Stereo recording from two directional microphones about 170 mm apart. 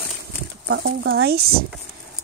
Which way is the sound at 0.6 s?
90° right.